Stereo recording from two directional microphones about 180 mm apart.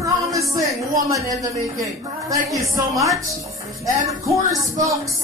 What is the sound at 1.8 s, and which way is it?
A woman's voice, 20° right (ahead or behind).